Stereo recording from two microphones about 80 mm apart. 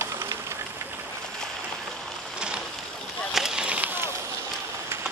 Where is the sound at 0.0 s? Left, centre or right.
Right.